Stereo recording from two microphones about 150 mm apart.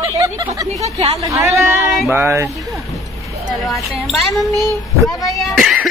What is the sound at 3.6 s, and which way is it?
Speech, centre (ahead or behind).